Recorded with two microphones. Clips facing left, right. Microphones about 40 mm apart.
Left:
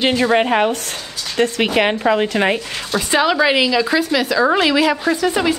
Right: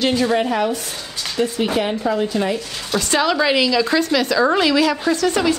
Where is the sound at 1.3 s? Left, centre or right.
Left.